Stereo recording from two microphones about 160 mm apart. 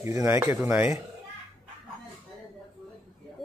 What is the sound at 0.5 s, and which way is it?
Speech, 10° right (ahead or behind).